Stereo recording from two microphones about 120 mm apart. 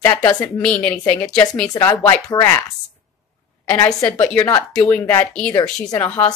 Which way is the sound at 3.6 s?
20° left (ahead or behind).